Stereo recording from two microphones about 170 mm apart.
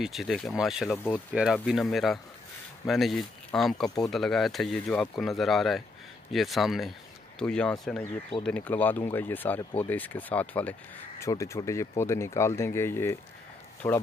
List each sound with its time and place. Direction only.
0.0 s speech: centre (ahead or behind); by 14.0 s 15° left (ahead or behind)